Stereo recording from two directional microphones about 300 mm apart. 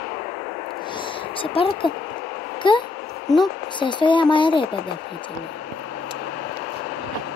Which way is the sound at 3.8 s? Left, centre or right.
Centre.